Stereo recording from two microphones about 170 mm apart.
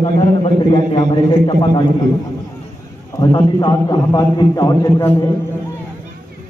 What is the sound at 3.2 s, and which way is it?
A man's voice, 20° left (ahead or behind).